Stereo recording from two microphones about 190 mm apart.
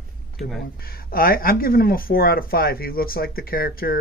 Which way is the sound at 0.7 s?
50° left (ahead or behind).